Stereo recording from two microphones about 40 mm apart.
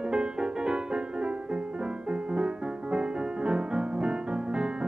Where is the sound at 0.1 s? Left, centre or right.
Right.